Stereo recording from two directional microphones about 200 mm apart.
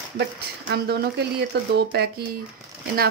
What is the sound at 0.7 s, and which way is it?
Speech, 55° right (ahead or behind).